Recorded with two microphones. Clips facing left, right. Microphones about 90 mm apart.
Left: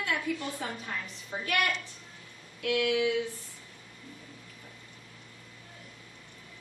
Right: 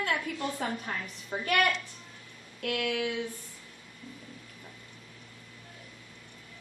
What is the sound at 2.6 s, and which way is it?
Speech, 50° right (ahead or behind).